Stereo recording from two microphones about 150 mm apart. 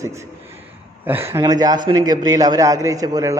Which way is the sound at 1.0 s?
15° right (ahead or behind).